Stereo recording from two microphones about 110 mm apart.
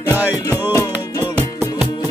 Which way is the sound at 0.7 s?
30° left (ahead or behind).